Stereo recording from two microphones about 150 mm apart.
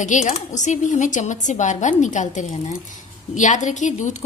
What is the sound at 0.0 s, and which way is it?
A woman's voice, 55° left (ahead or behind).